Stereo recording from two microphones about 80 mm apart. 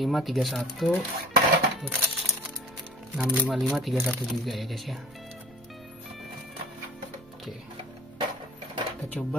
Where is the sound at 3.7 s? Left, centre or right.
Centre.